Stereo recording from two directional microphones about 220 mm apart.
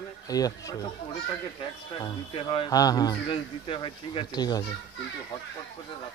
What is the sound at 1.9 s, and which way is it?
A man's voice, 20° left (ahead or behind).